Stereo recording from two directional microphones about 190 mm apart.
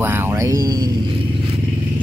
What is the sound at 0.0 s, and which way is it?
Vehicle, 10° right (ahead or behind).